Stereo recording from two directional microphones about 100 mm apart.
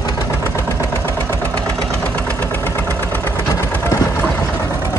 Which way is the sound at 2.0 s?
15° left (ahead or behind).